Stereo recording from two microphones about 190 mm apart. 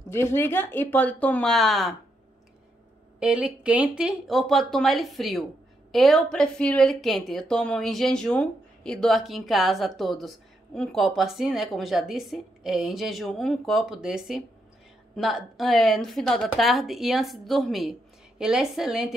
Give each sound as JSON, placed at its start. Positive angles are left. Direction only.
{"t": 0.1, "sound": "speech", "side_deg": 15}
{"t": 3.2, "sound": "speech", "side_deg": -5}